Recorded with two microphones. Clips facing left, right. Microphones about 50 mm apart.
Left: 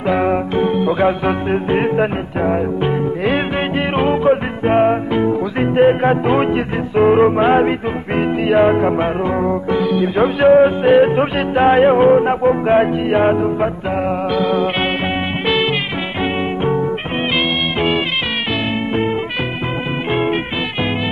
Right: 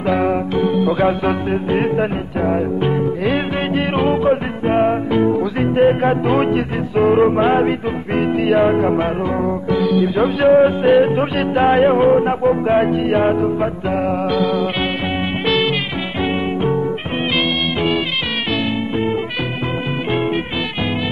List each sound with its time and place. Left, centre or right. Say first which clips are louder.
0.0 s music: left 1 dB; centre
14.5 s music: left 2 dB; left
15.4 s music: even; centre
20.1 s music: left 2 dB; centre